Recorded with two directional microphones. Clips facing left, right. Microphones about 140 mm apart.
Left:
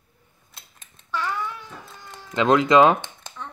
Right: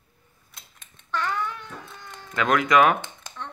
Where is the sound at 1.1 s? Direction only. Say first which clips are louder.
Even; 5° left (ahead or behind).